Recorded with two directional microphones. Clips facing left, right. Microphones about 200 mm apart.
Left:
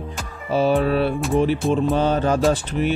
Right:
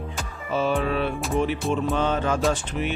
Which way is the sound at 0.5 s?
35° left (ahead or behind).